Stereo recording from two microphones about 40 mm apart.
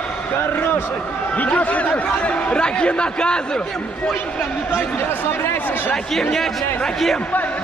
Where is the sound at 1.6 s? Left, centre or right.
Left.